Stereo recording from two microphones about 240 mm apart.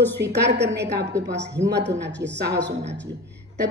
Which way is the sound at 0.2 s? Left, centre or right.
Right.